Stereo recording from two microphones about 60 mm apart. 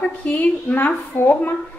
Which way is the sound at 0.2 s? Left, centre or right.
Left.